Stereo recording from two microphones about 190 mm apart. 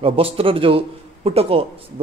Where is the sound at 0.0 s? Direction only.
30° right (ahead or behind).